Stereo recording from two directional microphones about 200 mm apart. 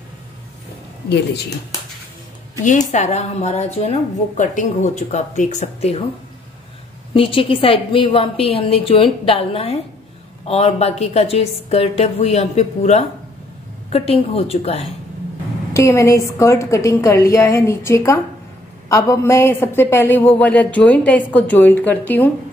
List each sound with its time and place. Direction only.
1.0 s speech: 55° left (ahead or behind)
2.9 s a woman's voice: 35° left (ahead or behind)
7.2 s a woman's voice: 25° left (ahead or behind)
15.7 s a woman's voice: 15° left (ahead or behind)